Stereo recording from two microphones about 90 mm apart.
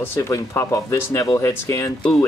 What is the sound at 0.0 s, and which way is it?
Speech, 25° left (ahead or behind).